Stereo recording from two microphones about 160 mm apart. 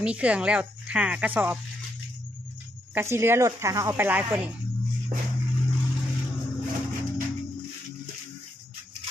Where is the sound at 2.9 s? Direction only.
15° right (ahead or behind).